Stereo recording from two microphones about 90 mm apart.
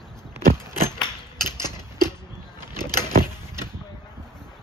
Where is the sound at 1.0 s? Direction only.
50° left (ahead or behind).